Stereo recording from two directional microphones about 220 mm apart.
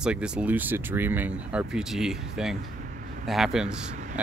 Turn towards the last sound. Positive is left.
turn(degrees=-35)  # may be behind; listen again after turning